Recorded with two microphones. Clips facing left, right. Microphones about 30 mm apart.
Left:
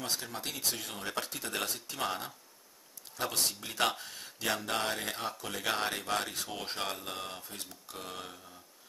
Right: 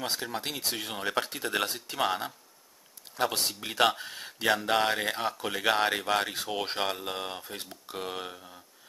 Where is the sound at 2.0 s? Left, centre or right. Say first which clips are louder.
Right 5 dB; centre.